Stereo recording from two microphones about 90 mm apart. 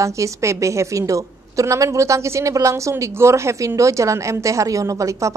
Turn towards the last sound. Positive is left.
turn(degrees=-35)  # may be behind; listen again after turning